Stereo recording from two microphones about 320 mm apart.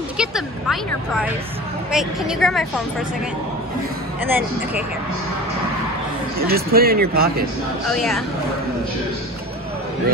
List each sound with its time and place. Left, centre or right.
0.2 s a woman's voice: centre
4.2 s speech: centre
6.4 s speech: right
7.9 s a woman's voice: centre